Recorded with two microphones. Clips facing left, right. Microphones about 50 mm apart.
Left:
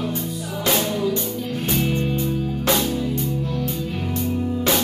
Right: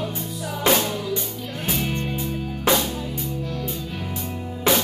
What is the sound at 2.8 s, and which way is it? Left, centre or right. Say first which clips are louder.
Music: left 5 dB; centre.